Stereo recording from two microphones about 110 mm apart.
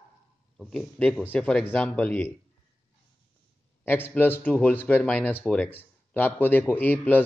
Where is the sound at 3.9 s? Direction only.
20° left (ahead or behind).